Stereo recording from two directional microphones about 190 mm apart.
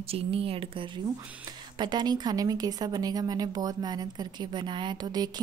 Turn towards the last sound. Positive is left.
turn(degrees=-20)  # may be behind; listen again after turning